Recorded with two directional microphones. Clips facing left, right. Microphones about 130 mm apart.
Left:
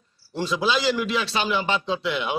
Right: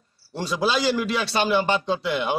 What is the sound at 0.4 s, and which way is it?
A man's voice, 40° right (ahead or behind).